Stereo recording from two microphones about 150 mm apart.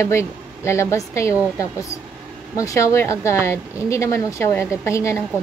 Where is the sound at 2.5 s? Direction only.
20° left (ahead or behind).